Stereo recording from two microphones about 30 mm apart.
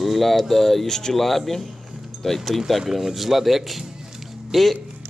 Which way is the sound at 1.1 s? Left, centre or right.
Centre.